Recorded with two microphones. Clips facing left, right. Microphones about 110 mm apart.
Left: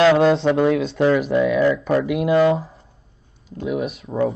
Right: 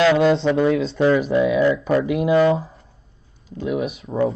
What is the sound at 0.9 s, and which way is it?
Speech, centre (ahead or behind).